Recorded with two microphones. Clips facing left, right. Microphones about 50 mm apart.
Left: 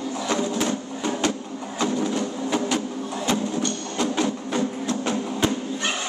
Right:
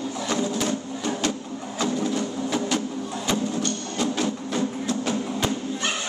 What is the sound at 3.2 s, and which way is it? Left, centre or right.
Music, centre.